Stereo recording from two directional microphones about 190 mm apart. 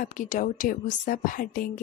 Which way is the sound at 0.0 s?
45° left (ahead or behind).